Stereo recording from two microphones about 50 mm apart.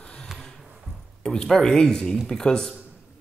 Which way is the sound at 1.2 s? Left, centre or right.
Centre.